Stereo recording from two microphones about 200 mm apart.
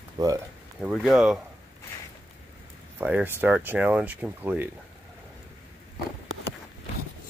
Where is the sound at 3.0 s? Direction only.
10° right (ahead or behind).